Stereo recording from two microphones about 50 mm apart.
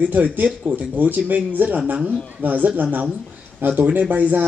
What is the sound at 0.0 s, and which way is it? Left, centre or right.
Speech, right.